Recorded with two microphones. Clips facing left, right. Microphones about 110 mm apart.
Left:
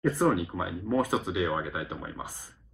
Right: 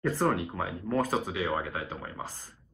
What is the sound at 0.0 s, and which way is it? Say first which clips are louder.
Speech: left 2 dB; 15° left (ahead or behind).